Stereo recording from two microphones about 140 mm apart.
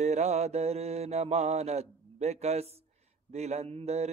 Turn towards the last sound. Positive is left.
turn(degrees=-50)  # may be behind; listen again after turning